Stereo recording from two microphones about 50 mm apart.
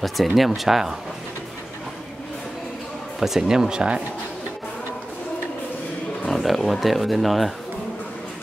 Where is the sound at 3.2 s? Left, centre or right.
Centre.